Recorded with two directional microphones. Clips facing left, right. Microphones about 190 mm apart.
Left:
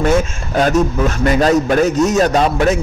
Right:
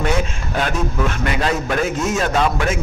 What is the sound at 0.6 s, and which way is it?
A man's voice, 40° left (ahead or behind).